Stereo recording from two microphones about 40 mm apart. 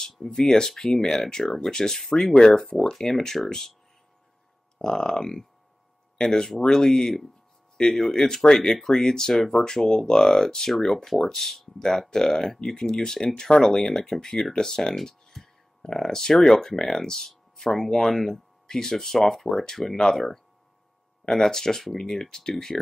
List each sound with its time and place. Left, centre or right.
0.2 s speech: centre
4.7 s speech: centre
8.7 s speech: centre
9.0 s speech: centre
9.3 s speech: centre
9.8 s speech: centre